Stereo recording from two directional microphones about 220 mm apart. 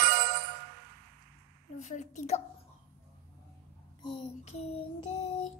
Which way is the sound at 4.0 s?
25° left (ahead or behind).